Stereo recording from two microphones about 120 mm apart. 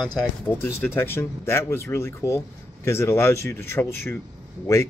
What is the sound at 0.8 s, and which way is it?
Speech, 20° left (ahead or behind).